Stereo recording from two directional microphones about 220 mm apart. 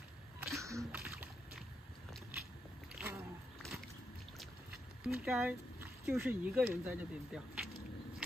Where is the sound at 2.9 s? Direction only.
10° right (ahead or behind).